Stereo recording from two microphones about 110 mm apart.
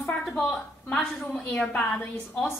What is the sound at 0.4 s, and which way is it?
A woman's voice, 10° left (ahead or behind).